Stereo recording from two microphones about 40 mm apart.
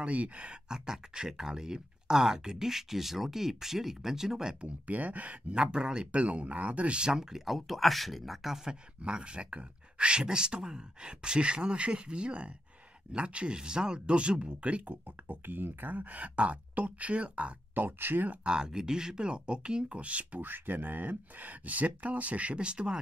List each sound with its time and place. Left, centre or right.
0.0 s speech: right
0.7 s speech: centre
4.6 s speech: right
5.5 s speech: right
6.2 s speech: right
7.1 s speech: centre
8.6 s speech: right
15.4 s speech: right
17.7 s speech: right
18.4 s speech: right
20.3 s speech: right